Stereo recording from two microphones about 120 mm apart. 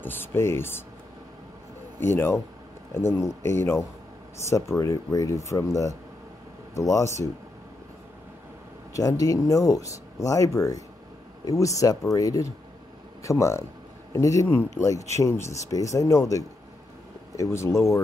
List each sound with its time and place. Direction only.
0.0 s speech: 15° left (ahead or behind)
2.0 s speech: 20° left (ahead or behind)
8.9 s speech: 30° left (ahead or behind)